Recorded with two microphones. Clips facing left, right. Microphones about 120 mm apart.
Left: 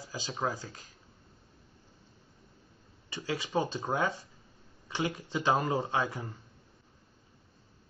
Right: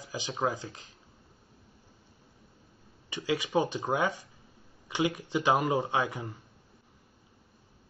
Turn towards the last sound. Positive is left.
turn(degrees=-15)  # may be behind; listen again after turning